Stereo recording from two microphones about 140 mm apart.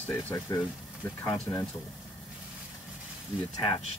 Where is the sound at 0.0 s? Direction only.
15° left (ahead or behind).